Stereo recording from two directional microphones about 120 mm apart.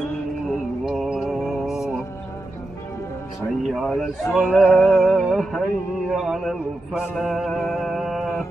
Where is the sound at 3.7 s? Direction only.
Centre (ahead or behind).